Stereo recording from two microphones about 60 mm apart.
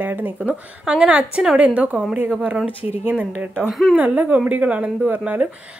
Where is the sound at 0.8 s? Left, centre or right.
Centre.